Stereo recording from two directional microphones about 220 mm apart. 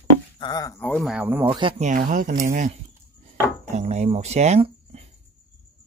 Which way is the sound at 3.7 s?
30° right (ahead or behind).